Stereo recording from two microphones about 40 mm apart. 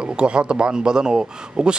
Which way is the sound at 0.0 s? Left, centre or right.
Right.